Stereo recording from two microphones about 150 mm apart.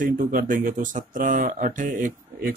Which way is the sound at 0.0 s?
65° right (ahead or behind).